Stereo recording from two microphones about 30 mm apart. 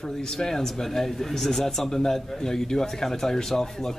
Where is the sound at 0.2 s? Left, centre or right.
Centre.